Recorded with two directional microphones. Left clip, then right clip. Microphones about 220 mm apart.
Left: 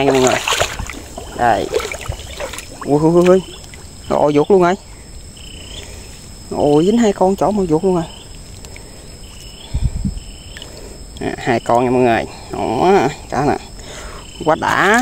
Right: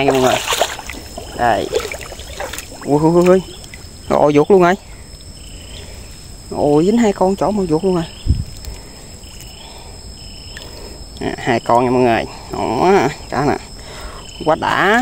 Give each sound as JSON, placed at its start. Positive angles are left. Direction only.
{"t": 0.1, "sound": "a sound", "side_deg": 15}
{"t": 1.3, "sound": "speech", "side_deg": 0}
{"t": 1.7, "sound": "rowboat", "side_deg": 15}
{"t": 2.3, "sound": "boat", "side_deg": 0}
{"t": 4.1, "sound": "speech", "side_deg": -10}
{"t": 6.5, "sound": "speech", "side_deg": 5}
{"t": 11.1, "sound": "speech", "side_deg": 0}